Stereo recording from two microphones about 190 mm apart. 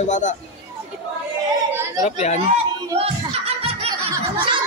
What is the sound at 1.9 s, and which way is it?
Speech, 40° left (ahead or behind).